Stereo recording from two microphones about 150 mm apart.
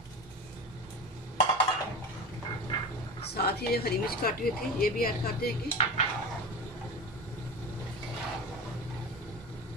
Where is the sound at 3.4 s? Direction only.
90° left.